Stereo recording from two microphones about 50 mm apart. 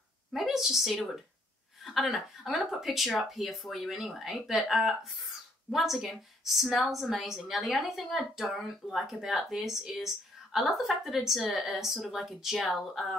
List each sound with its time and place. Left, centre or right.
0.3 s a woman's voice: centre
2.0 s a woman's voice: centre